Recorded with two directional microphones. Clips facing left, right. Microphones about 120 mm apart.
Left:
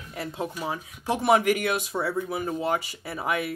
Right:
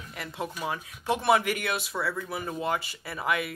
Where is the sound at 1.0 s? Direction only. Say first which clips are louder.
Left 3 dB; 20° left (ahead or behind).